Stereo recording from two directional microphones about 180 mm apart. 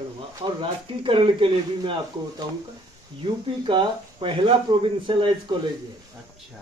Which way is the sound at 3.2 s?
30° right (ahead or behind).